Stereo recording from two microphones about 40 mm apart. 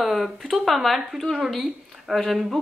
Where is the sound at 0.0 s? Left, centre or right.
Centre.